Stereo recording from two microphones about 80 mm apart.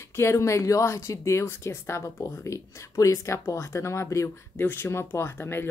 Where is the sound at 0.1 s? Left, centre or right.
Left.